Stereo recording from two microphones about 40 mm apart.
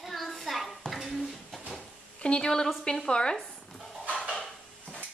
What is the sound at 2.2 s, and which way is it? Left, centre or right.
A woman's voice, left.